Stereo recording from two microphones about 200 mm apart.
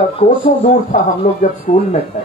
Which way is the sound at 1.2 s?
45° left (ahead or behind).